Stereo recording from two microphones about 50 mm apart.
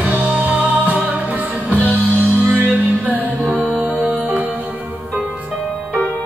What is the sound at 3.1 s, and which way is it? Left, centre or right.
Music, right.